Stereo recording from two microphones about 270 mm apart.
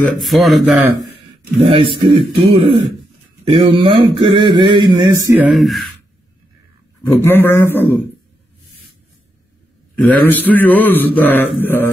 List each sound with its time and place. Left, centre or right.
0.0 s speech: centre
1.6 s a man's voice: centre
7.2 s mantra: centre
9.9 s mantra: centre